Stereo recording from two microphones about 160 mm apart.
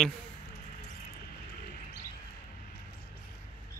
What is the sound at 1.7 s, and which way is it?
Bird, 75° left (ahead or behind).